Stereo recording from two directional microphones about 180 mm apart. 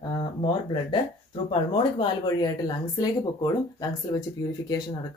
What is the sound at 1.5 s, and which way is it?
Speech, 30° left (ahead or behind).